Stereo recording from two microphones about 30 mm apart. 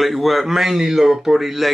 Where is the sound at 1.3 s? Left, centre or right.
Centre.